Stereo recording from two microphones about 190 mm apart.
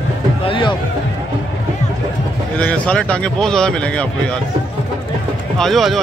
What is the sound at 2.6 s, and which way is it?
Speech, 5° left (ahead or behind).